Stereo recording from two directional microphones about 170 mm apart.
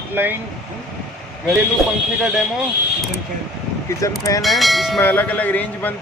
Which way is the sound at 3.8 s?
20° left (ahead or behind).